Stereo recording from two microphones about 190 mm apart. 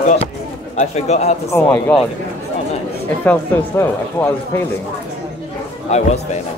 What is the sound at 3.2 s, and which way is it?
Speech, 10° left (ahead or behind).